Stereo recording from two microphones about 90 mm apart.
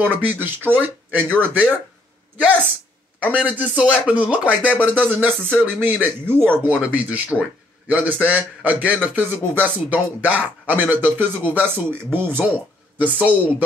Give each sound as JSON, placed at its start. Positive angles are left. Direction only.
{"t": 0.0, "sound": "speech", "side_deg": -20}
{"t": 3.2, "sound": "speech", "side_deg": -15}